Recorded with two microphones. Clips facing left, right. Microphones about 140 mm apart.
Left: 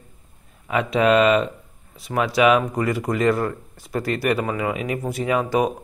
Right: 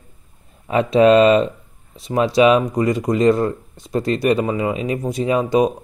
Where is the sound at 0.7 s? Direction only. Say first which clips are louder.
Right 6 dB; 30° right (ahead or behind).